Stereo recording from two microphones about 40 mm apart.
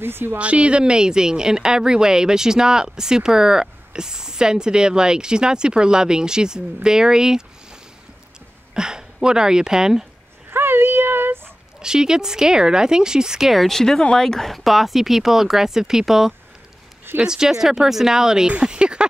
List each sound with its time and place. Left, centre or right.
0.0 s a woman's voice: right
0.4 s a woman's voice: right
8.7 s speech: centre
10.5 s a sound: right
11.8 s a woman's voice: centre
13.5 s a woman's voice: centre; by 19.0 s right